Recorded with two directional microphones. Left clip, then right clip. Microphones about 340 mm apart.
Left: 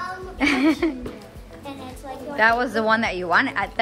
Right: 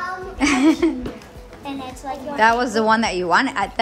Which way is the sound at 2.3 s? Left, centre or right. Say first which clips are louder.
Right 2 dB; centre.